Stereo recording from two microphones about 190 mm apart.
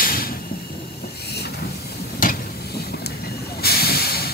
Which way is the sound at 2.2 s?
55° left (ahead or behind).